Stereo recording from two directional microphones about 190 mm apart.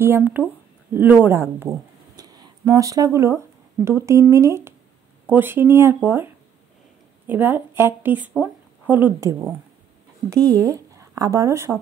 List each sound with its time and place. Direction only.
0.0 s speech: 10° right (ahead or behind)
10.5 s speech: 15° right (ahead or behind)